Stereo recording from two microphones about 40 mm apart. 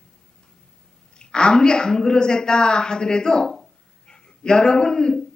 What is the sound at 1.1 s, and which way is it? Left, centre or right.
A woman's voice, left.